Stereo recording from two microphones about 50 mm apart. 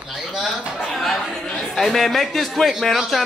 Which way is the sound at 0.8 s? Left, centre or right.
Centre.